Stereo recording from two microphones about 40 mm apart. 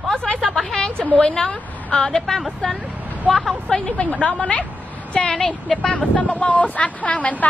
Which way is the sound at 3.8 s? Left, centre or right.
Left.